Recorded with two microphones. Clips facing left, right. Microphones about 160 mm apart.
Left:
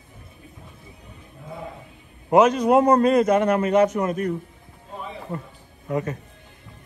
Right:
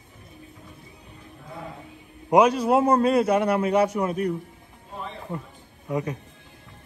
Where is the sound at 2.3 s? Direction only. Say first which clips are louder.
Left 2 dB; 10° right (ahead or behind).